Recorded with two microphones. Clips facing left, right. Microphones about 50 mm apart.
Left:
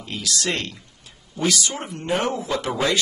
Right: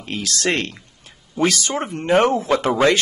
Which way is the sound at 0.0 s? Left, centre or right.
Right.